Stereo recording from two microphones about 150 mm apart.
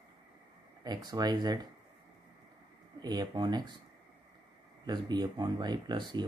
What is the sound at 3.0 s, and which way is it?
Speech, 25° right (ahead or behind).